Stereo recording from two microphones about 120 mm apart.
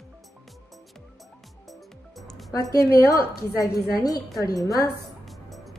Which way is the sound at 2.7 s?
30° left (ahead or behind).